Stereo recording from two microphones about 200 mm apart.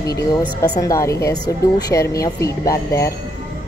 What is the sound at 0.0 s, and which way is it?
Speech, 20° left (ahead or behind).